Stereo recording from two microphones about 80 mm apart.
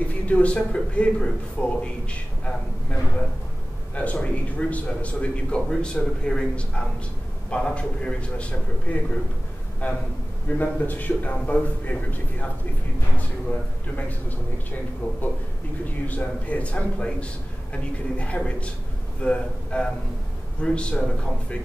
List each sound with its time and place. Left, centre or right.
0.3 s a man's voice: centre
13.5 s a man's voice: centre
16.1 s a man's voice: centre